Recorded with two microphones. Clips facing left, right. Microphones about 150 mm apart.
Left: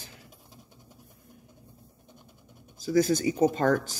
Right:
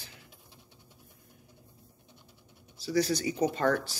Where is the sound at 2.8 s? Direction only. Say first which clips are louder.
Left 5 dB; 45° left (ahead or behind).